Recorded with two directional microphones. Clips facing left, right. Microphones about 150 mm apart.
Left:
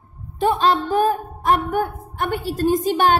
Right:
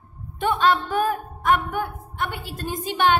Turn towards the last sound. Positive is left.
turn(degrees=40)  # may be behind; listen again after turning